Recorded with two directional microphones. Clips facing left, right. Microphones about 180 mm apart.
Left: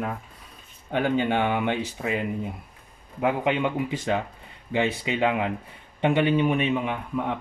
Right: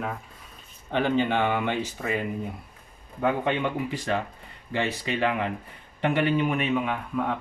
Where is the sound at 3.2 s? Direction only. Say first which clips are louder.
Left 1 dB; 15° left (ahead or behind).